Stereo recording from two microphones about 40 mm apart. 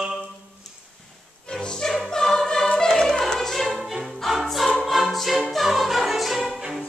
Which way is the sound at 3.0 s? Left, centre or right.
Centre.